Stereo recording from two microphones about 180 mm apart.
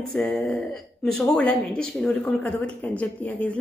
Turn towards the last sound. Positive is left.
turn(degrees=5)  # may be behind; listen again after turning